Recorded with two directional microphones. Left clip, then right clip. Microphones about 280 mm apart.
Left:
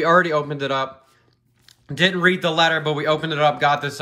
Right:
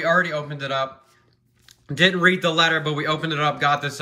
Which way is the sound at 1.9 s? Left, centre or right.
Centre.